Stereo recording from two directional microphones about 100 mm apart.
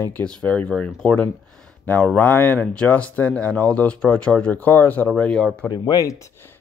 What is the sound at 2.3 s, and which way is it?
Speech, 20° left (ahead or behind).